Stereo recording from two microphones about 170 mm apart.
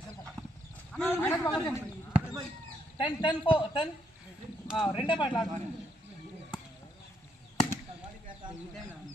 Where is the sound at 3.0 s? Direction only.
30° left (ahead or behind).